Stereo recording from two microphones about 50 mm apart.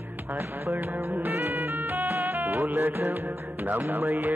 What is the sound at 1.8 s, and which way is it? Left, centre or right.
Music, right.